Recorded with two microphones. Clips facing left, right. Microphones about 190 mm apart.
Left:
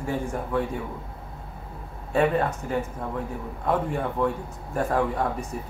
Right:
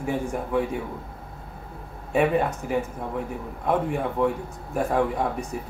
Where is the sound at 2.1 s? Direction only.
10° right (ahead or behind).